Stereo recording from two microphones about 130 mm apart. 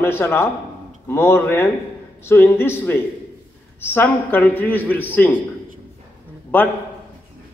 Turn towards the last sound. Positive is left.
turn(degrees=15)  # may be behind; listen again after turning